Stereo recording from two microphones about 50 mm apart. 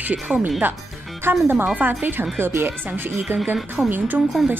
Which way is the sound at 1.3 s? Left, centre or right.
Right.